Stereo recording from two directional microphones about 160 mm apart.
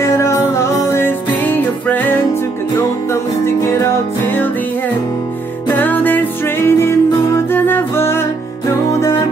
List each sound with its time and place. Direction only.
0.0 s music: 15° left (ahead or behind)
5.7 s music: 10° left (ahead or behind)